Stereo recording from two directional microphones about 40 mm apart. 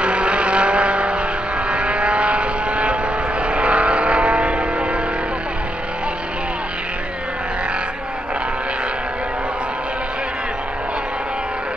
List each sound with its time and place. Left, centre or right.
0.0 s vehicle: right